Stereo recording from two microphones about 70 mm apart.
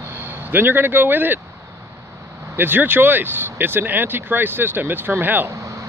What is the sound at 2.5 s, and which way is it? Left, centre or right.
Speech, right.